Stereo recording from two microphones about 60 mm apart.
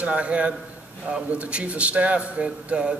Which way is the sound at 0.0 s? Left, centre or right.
Right.